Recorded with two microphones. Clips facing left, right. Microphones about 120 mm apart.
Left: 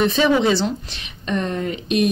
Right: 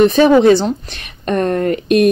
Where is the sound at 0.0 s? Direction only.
50° right (ahead or behind).